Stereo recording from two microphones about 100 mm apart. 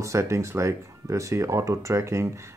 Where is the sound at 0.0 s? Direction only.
30° right (ahead or behind).